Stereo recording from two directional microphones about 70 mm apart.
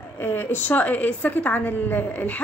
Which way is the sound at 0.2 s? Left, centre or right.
Left.